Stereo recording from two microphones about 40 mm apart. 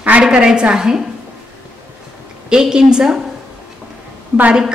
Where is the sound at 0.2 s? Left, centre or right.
Right.